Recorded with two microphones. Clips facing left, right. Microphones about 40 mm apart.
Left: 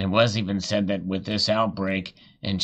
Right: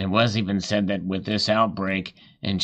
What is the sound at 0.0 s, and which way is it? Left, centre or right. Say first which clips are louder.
Speech: even; centre.